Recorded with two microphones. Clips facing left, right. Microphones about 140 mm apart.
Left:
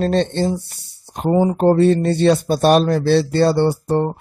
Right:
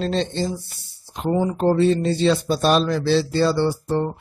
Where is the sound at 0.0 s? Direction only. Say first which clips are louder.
Left 5 dB; 60° left (ahead or behind).